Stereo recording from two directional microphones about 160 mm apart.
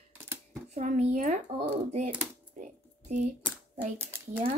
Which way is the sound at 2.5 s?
50° right (ahead or behind).